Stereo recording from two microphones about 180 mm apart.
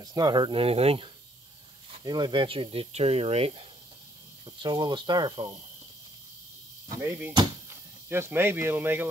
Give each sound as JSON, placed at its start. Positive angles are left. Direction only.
{"t": 0.0, "sound": "speech", "side_deg": -20}
{"t": 7.0, "sound": "speech", "side_deg": -15}